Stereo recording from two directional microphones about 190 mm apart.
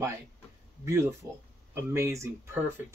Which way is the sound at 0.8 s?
15° right (ahead or behind).